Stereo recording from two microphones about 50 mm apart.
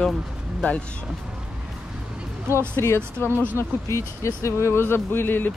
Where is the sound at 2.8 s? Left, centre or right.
Left.